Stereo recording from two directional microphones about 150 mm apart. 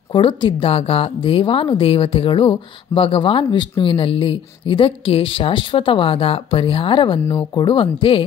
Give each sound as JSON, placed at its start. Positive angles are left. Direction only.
{"t": 0.1, "sound": "a woman's voice", "side_deg": 35}